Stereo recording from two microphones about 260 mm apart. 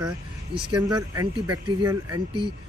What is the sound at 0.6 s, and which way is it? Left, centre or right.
Speech, centre.